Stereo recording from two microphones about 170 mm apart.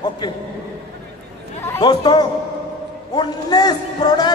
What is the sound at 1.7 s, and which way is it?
A man's voice, 25° left (ahead or behind).